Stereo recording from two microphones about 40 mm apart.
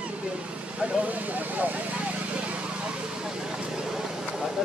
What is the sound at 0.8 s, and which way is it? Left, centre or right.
Speech, right.